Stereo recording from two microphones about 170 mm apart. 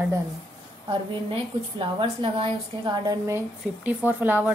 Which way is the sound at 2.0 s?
30° right (ahead or behind).